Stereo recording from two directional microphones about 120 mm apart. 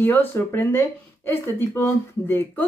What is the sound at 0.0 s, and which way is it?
Speech, 15° left (ahead or behind).